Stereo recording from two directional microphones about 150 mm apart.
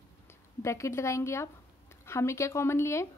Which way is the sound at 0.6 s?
20° left (ahead or behind).